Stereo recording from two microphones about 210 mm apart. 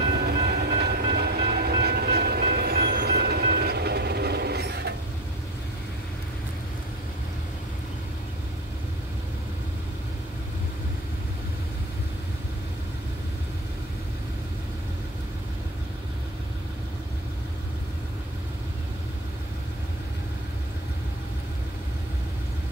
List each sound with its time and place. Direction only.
0.2 s train: 50° right (ahead or behind)